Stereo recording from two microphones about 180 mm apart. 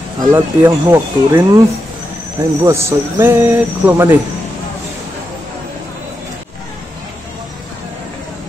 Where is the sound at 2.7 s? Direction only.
15° right (ahead or behind).